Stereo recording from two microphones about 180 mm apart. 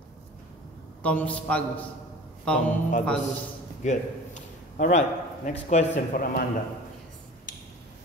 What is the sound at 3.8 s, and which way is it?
A man's voice, 40° left (ahead or behind).